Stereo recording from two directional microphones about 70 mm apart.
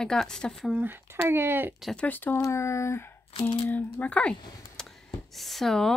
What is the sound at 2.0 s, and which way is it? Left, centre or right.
Speech, left.